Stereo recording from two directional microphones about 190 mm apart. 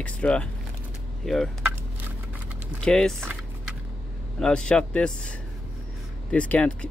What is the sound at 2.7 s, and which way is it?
Speech, 5° left (ahead or behind).